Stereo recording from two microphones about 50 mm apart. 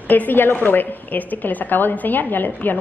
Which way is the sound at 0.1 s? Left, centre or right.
Left.